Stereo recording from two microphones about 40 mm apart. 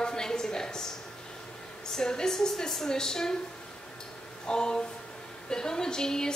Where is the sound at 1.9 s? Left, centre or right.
Centre.